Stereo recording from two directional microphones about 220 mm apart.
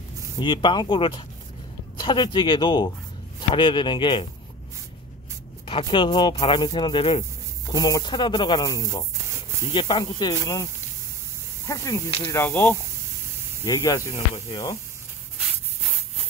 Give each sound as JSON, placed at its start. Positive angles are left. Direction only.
{"t": 0.4, "sound": "speech", "side_deg": 20}
{"t": 5.7, "sound": "speech", "side_deg": 25}